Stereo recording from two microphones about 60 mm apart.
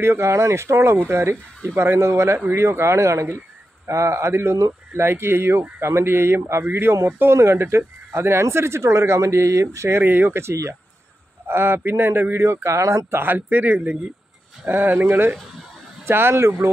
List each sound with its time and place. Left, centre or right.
0.0 s speech: right
10.4 s speech: right
11.4 s speech: right
13.2 s speech: right